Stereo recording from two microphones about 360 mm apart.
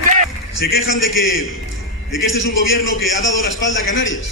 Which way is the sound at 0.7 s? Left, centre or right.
Left.